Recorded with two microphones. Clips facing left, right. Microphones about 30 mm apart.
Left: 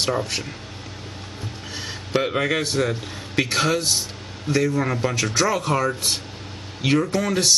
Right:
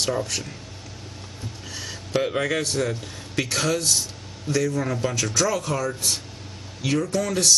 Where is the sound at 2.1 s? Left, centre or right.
Left.